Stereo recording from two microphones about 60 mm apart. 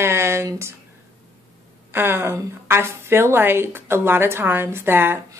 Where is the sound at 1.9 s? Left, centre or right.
Right.